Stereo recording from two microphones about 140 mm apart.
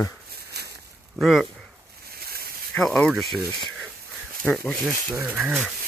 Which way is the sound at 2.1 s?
90° right.